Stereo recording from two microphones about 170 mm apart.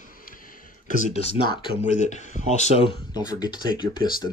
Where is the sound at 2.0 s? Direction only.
45° left (ahead or behind).